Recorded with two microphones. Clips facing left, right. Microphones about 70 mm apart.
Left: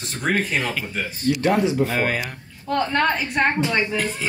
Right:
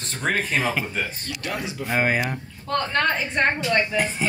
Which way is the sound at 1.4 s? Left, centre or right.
Left.